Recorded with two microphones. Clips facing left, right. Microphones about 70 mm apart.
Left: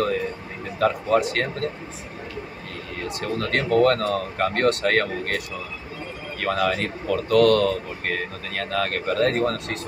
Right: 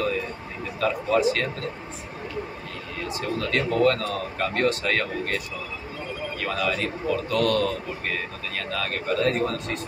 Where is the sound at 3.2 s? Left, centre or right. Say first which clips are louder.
Left 1 dB; left.